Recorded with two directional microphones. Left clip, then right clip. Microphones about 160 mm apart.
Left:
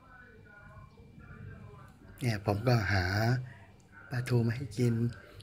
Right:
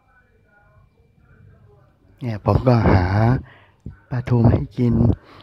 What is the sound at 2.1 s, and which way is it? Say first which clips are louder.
Speech: right 11 dB; 40° right (ahead or behind).